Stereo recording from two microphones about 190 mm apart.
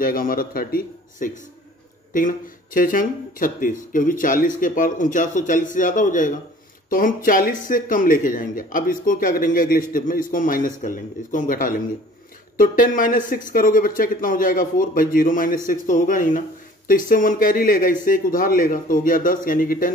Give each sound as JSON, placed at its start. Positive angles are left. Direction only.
{"t": 0.0, "sound": "speech", "side_deg": 50}